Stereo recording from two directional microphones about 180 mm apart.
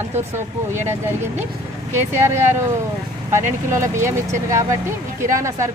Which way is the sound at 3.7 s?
15° right (ahead or behind).